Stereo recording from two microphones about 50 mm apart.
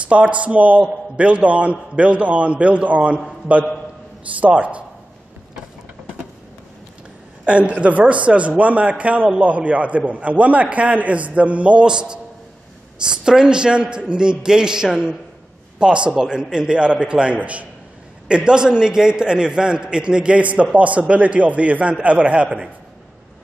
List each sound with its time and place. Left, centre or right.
0.1 s a man's voice: right
7.4 s a man's voice: right
13.2 s a man's voice: centre